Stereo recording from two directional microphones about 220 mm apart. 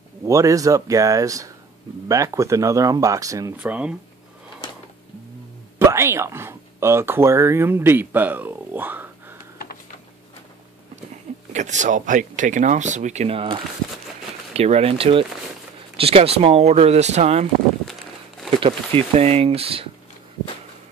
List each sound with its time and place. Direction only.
0.2 s speech: 15° right (ahead or behind)
5.9 s speech: 10° right (ahead or behind)
11.5 s speech: 35° right (ahead or behind)
18.6 s speech: 25° right (ahead or behind)